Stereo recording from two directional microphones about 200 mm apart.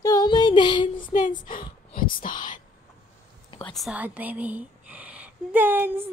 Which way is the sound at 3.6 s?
Centre (ahead or behind).